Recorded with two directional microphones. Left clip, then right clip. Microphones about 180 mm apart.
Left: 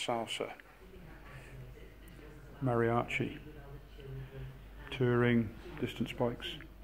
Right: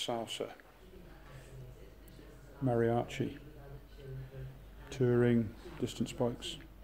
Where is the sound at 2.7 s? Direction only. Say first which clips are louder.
Left 1 dB; 30° right (ahead or behind).